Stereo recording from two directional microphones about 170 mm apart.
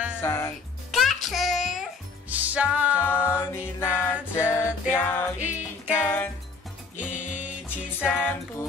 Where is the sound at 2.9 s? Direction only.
15° left (ahead or behind).